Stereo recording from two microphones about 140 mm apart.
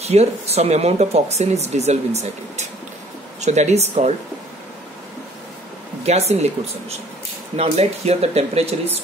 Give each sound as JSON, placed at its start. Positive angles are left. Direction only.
{"t": 0.0, "sound": "speech", "side_deg": -50}
{"t": 6.0, "sound": "speech", "side_deg": -50}